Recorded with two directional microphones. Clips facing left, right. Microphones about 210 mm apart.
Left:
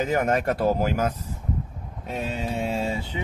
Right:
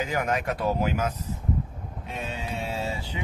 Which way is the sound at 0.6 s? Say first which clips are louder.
Left 3 dB; 35° left (ahead or behind).